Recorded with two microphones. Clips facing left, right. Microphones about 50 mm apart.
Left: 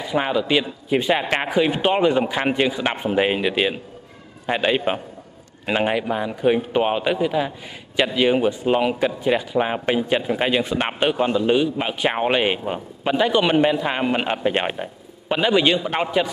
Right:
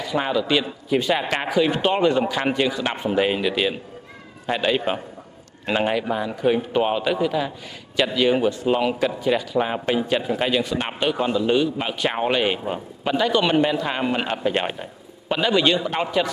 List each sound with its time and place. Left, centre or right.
0.0 s a man's voice: centre